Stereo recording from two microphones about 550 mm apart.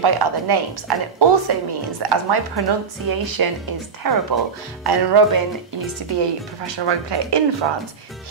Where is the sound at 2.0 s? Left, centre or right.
Right.